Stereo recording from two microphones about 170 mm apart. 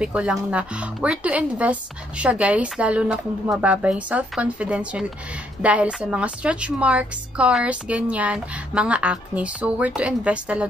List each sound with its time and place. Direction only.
0.0 s a woman's voice: 5° right (ahead or behind)